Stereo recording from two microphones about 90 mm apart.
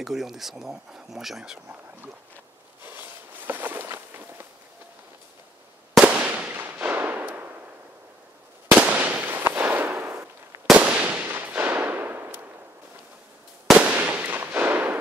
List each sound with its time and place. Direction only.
0.0 s speech: 5° right (ahead or behind)
2.8 s a sound: 20° right (ahead or behind)
5.9 s firecracker: 15° right (ahead or behind)
8.7 s fireworks: 15° right (ahead or behind)
10.7 s firecracker: 15° right (ahead or behind)
13.7 s fireworks: 15° right (ahead or behind)